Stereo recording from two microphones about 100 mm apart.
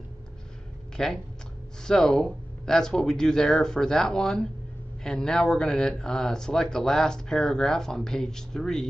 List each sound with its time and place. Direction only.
0.9 s speech: 5° left (ahead or behind)